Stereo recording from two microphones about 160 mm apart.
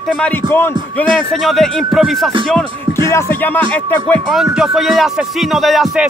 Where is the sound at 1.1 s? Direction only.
Centre (ahead or behind).